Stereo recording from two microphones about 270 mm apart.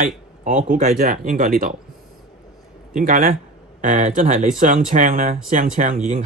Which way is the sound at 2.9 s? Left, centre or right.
Right.